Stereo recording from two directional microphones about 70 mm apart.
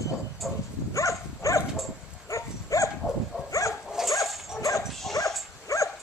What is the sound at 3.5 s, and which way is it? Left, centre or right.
Dog, left.